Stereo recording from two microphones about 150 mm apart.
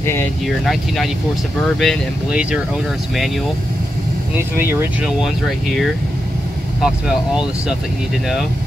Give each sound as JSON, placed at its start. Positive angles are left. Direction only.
{"t": 0.0, "sound": "vehicle", "side_deg": 15}
{"t": 0.5, "sound": "speech", "side_deg": 0}
{"t": 4.4, "sound": "speech", "side_deg": -15}
{"t": 6.8, "sound": "speech", "side_deg": -5}